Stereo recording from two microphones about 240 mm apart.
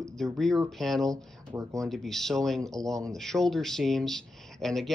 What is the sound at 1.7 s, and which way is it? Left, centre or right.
Speech, centre.